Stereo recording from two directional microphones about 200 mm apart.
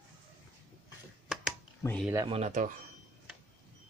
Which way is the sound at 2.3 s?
35° right (ahead or behind).